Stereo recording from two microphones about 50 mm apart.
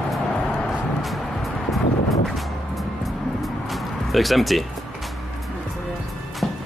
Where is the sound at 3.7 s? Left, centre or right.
Centre.